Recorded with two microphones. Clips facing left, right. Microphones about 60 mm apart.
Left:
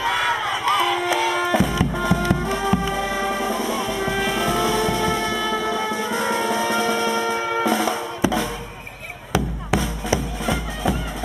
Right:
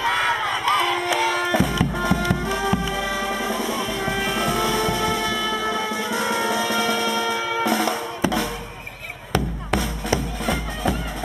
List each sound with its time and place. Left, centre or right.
0.0 s crowd: centre
1.1 s music: centre
2.9 s music: centre
3.4 s music: centre
5.2 s music: left
5.6 s music: centre
6.2 s music: centre
6.6 s music: centre
7.6 s drum: centre
9.3 s music: centre